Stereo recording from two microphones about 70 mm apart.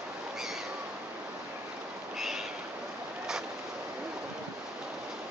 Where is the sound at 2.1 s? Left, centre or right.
Centre.